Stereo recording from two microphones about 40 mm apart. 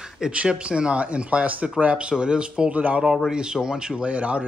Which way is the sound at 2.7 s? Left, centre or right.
Right.